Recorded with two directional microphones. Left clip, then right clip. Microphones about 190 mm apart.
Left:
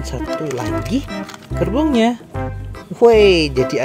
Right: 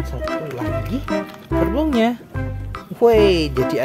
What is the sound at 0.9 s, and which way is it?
Speech, 25° left (ahead or behind).